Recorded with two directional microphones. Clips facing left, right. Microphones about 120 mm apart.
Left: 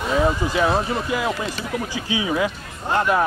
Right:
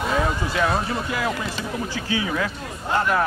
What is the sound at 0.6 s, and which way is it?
A man's voice, 10° left (ahead or behind).